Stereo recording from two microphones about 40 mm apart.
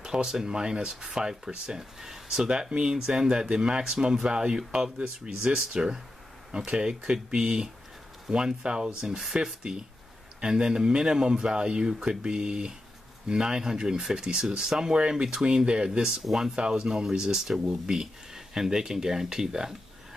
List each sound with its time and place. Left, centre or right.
0.0 s speech: centre